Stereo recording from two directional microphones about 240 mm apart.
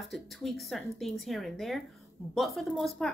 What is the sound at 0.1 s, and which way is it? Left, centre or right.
Speech, centre.